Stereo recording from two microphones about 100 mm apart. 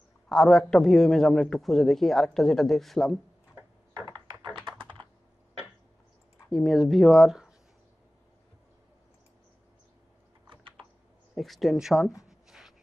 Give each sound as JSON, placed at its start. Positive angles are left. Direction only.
{"t": 0.3, "sound": "a man's voice", "side_deg": 5}
{"t": 5.0, "sound": "computer keyboard", "side_deg": -50}
{"t": 6.5, "sound": "a man's voice", "side_deg": 0}
{"t": 10.5, "sound": "typing", "side_deg": -55}
{"t": 11.3, "sound": "a man's voice", "side_deg": 0}
{"t": 12.3, "sound": "a sound", "side_deg": -5}